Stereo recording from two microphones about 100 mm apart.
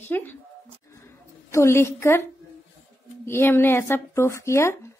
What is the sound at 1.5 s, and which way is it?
Speech, 30° left (ahead or behind).